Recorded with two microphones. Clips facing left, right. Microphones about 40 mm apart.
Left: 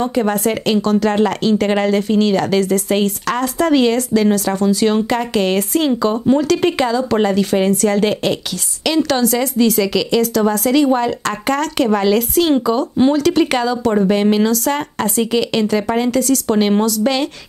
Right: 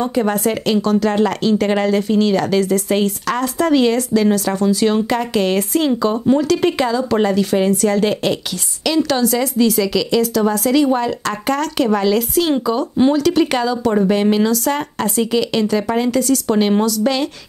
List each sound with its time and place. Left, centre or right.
0.0 s speech: centre
8.8 s speech: centre
16.1 s speech: centre
16.4 s speech: centre